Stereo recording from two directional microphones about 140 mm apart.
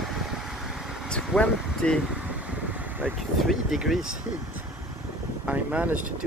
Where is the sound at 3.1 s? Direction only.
Centre (ahead or behind).